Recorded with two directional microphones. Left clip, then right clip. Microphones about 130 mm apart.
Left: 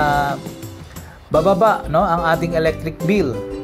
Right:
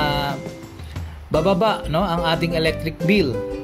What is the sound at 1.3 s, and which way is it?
Speech, 30° right (ahead or behind).